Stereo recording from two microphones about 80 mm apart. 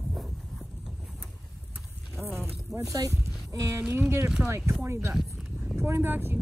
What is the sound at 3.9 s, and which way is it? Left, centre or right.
Speech, right.